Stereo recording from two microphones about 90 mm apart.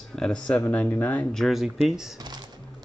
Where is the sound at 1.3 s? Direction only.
Centre (ahead or behind).